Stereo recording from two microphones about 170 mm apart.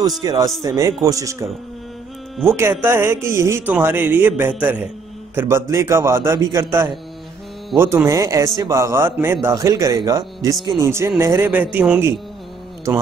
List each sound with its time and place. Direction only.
0.2 s speech: 20° right (ahead or behind)
10.9 s speech: 15° right (ahead or behind)